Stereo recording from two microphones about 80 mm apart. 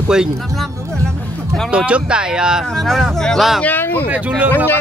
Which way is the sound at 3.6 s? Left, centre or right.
Left.